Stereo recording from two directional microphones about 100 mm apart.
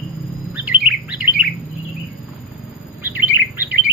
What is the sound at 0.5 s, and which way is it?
Bird, 15° right (ahead or behind).